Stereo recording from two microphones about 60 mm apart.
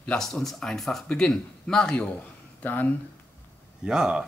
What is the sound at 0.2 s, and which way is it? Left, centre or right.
A man's voice, centre.